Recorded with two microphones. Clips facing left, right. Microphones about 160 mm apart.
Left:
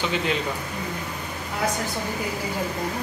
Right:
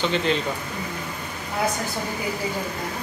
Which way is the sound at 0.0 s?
5° left (ahead or behind).